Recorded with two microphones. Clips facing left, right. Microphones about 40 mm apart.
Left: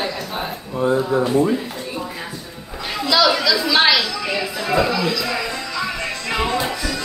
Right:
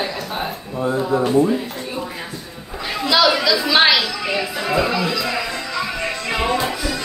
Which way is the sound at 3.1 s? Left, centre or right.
Centre.